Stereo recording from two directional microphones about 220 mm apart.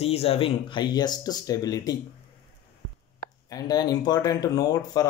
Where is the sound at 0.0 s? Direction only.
25° left (ahead or behind).